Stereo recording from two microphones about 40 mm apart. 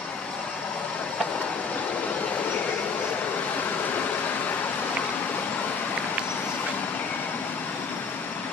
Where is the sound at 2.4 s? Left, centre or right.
Left.